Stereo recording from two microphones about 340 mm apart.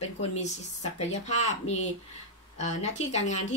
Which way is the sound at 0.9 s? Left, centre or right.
Centre.